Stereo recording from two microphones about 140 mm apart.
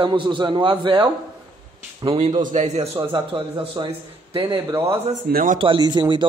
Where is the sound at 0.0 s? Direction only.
35° right (ahead or behind).